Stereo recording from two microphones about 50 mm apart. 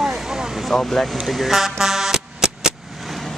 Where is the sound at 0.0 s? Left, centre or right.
Centre.